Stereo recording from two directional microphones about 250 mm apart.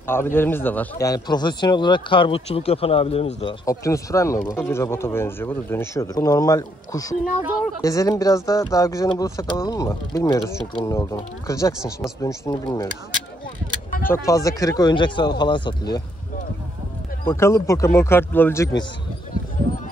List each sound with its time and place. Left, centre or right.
0.0 s speech: centre
14.0 s speech: centre
17.3 s speech: centre